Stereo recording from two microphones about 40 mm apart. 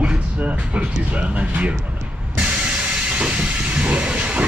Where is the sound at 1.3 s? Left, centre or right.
Right.